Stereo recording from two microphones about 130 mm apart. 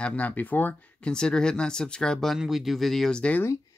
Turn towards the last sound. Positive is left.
turn(degrees=10)  # may be behind; listen again after turning